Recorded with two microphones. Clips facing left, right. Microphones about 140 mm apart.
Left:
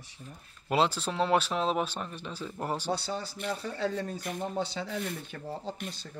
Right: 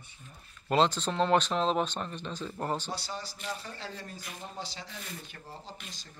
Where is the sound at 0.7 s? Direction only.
10° left (ahead or behind).